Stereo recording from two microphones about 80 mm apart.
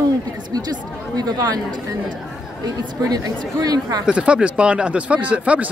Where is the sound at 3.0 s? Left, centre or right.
Right.